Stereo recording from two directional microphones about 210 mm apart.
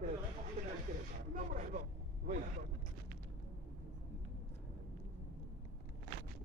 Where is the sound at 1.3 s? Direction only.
40° right (ahead or behind).